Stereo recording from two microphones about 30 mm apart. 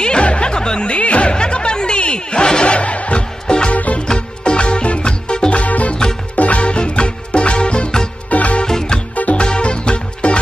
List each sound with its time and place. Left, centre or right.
0.2 s music: left
0.6 s speech: left
1.3 s music: left
2.7 s music: left
3.4 s music: left
3.7 s music: left
4.1 s music: left
5.6 s music: left
8.3 s music: left
8.6 s music: centre
9.1 s music: left
9.4 s music: left